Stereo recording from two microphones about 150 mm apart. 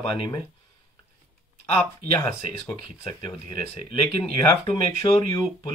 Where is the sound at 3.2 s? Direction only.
40° left (ahead or behind).